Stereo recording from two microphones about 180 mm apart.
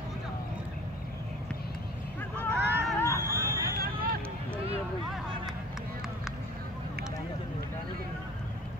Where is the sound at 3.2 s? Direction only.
15° right (ahead or behind).